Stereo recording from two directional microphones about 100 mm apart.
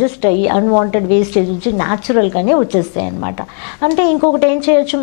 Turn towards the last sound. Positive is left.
turn(degrees=15)  # may be behind; listen again after turning